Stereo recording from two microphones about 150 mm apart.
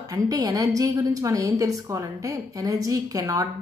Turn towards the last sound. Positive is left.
turn(degrees=-20)  # may be behind; listen again after turning